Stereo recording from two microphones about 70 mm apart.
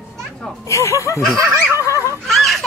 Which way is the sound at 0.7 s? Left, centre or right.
Left.